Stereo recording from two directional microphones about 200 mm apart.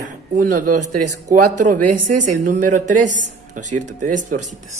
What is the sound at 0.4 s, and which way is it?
A woman's voice, 40° right (ahead or behind).